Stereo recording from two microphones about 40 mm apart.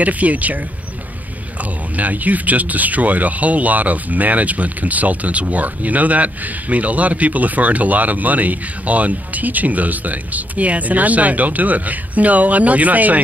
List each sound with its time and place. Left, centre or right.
0.0 s speech: right
1.6 s speech: right